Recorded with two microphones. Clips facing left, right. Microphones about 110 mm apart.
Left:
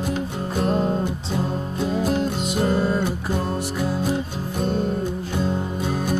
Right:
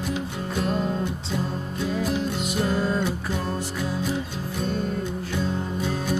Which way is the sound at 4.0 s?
45° left (ahead or behind).